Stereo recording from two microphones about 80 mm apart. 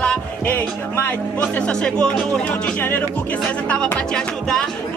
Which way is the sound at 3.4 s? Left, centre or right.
Centre.